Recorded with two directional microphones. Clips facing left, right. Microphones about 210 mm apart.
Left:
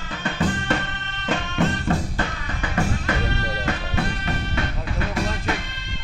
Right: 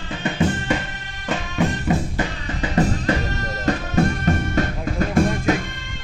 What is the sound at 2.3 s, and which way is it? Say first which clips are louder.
Music: right 5 dB; 30° right (ahead or behind).